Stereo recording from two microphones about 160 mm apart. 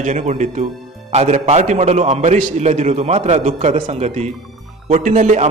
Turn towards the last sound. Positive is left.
turn(degrees=-50)  # may be behind; listen again after turning